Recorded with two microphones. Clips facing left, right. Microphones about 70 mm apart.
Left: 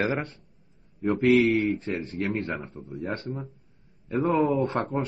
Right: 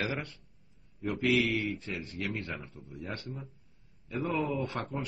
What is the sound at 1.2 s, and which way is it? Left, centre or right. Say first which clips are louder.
A man's voice: left 8 dB; left.